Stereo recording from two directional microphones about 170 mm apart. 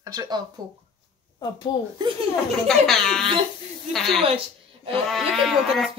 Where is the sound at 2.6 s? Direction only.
Centre (ahead or behind).